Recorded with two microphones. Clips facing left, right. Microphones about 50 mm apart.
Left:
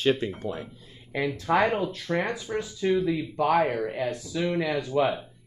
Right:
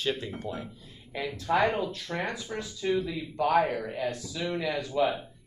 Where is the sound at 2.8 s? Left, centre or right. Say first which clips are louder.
Left 4 dB; left.